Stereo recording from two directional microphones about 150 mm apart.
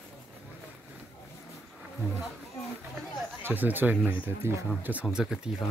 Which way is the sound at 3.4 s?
10° right (ahead or behind).